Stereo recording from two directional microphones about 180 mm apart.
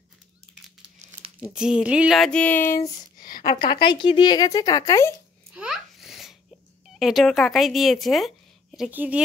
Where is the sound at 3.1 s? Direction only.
50° left (ahead or behind).